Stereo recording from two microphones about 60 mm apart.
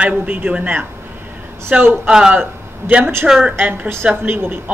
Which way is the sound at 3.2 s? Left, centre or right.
Centre.